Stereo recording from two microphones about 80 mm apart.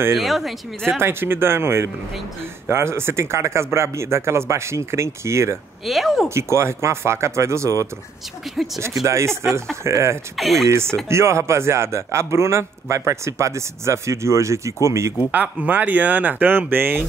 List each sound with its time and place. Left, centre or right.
0.2 s speech: centre
0.9 s speech: right
5.9 s speech: centre
6.2 s speech: right
8.6 s speech: centre
9.0 s speech: right
10.3 s speech: centre
10.7 s speech: right
15.3 s speech: centre